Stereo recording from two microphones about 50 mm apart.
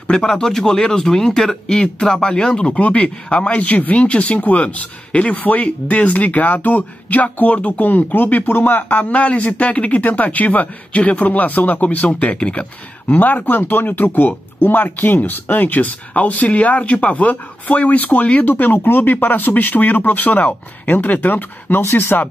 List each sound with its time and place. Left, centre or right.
0.1 s speech: centre
2.8 s speech: left
7.8 s speech: left
13.1 s speech: left